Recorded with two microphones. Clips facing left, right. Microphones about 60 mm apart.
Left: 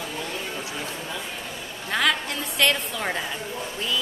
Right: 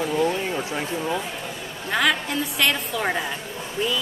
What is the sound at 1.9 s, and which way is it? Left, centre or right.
A woman's voice, centre.